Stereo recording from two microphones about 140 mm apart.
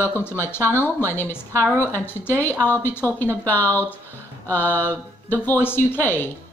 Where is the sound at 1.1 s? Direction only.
15° left (ahead or behind).